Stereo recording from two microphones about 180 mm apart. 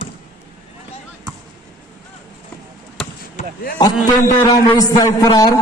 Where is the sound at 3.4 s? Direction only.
40° left (ahead or behind).